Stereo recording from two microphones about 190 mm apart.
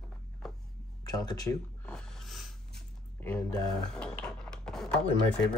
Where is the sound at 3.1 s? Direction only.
15° left (ahead or behind).